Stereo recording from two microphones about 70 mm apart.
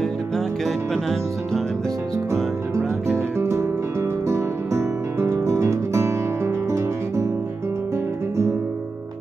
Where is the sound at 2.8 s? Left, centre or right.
Right.